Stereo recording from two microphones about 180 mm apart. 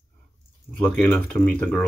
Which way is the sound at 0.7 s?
5° left (ahead or behind).